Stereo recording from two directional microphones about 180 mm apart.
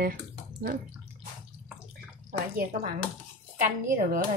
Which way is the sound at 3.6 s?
55° right (ahead or behind).